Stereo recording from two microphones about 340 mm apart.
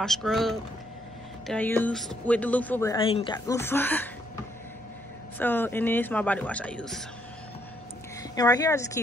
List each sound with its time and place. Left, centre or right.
0.0 s speech: centre
5.4 s speech: centre
8.2 s speech: centre